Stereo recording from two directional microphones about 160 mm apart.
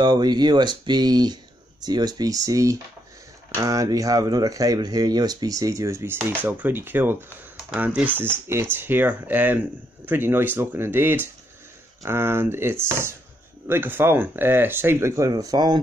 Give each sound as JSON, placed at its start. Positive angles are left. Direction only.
{"t": 0.0, "sound": "speech", "side_deg": -25}